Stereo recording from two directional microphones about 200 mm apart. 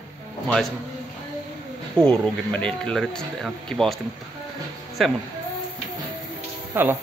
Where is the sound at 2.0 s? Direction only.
5° left (ahead or behind).